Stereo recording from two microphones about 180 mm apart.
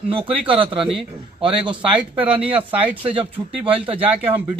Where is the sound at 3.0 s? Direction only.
30° right (ahead or behind).